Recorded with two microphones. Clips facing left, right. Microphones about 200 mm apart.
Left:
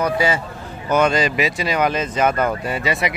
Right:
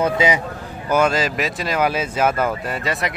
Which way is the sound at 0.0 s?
20° right (ahead or behind).